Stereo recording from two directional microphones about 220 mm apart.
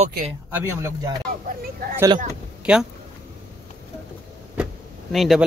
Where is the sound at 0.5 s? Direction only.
10° right (ahead or behind).